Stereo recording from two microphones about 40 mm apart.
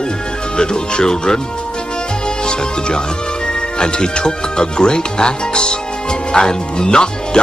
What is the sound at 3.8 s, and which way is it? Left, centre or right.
Speech, centre.